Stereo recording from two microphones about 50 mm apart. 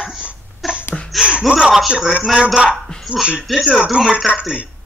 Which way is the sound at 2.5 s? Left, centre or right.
Centre.